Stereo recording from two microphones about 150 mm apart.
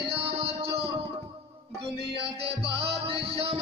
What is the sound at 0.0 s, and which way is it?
Music, 40° right (ahead or behind).